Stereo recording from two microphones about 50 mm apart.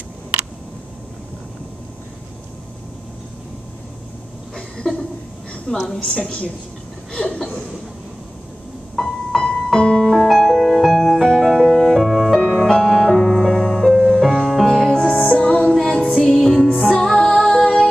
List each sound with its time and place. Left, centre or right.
4.6 s a sound: centre
5.7 s a woman's voice: centre
7.1 s chuckle: centre
8.9 s music: centre
9.4 s music: centre
9.7 s piano: centre
10.2 s music: centre
15.2 s music: centre
15.7 s music: centre